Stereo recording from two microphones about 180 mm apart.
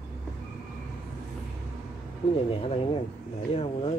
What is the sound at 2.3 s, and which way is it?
Speech, 35° left (ahead or behind).